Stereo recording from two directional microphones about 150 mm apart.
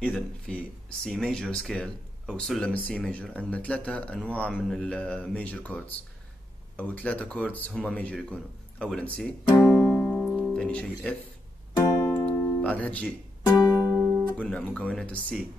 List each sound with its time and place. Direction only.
0.0 s speech: 10° left (ahead or behind)
9.8 s music: 15° left (ahead or behind)
12.1 s music: 10° left (ahead or behind)
13.6 s music: 25° left (ahead or behind)
13.8 s music: 10° right (ahead or behind)
14.1 s speech: 10° left (ahead or behind)